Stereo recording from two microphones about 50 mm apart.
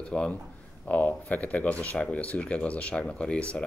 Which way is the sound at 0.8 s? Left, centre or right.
Left.